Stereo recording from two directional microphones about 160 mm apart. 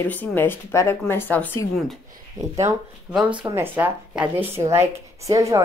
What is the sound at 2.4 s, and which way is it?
Speech, 50° right (ahead or behind).